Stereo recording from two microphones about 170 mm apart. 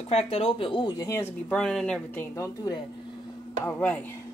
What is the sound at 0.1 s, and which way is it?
Speech, 35° left (ahead or behind).